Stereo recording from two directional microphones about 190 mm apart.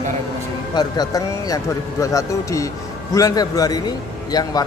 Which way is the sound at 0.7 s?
20° left (ahead or behind).